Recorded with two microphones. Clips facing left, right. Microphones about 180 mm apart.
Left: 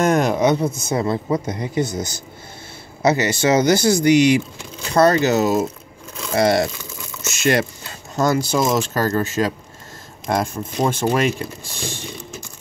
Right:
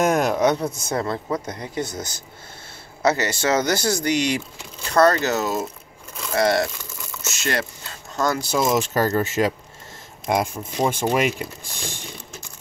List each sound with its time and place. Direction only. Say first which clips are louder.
0.0 s speech: left 2 dB; 5° right (ahead or behind); by 7.6 s 15° left (ahead or behind)
8.2 s speech: left 4 dB; 5° left (ahead or behind)
8.7 s speech: left 1 dB; 20° right (ahead or behind)
10.2 s speech: left 1 dB; 10° right (ahead or behind)